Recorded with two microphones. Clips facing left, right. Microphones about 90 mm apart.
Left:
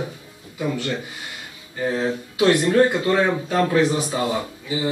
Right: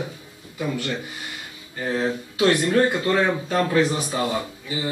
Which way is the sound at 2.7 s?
15° left (ahead or behind).